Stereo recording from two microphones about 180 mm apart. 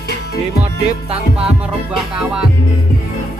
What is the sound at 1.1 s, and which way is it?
Music, 5° right (ahead or behind).